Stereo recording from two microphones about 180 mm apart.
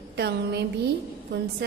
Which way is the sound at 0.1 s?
70° right (ahead or behind).